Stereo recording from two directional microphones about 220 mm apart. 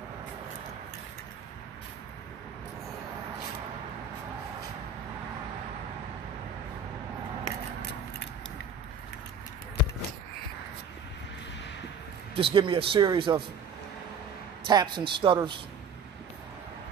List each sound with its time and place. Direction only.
7.4 s scissors: 50° left (ahead or behind)
12.4 s speech: 25° right (ahead or behind)
14.7 s speech: 20° right (ahead or behind)